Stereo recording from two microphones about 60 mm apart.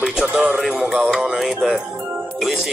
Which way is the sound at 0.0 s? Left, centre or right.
Centre.